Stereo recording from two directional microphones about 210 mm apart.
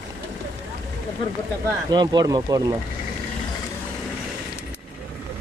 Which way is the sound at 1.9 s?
20° right (ahead or behind).